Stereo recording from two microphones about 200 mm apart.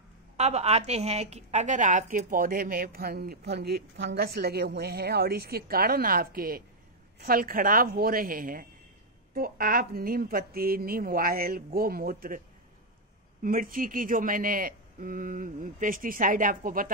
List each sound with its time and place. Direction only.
0.4 s a woman's voice: 35° right (ahead or behind)
13.4 s a woman's voice: 45° right (ahead or behind)